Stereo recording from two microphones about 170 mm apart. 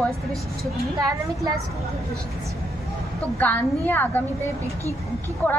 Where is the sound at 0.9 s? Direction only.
20° right (ahead or behind).